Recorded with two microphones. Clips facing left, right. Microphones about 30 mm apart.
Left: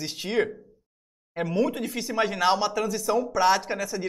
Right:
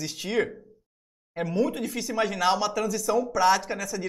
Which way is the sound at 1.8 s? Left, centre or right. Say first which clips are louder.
Left 1 dB; centre.